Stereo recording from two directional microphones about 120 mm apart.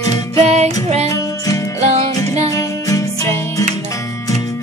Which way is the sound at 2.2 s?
65° right (ahead or behind).